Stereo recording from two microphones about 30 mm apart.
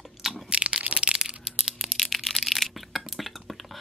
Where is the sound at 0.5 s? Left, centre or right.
Right.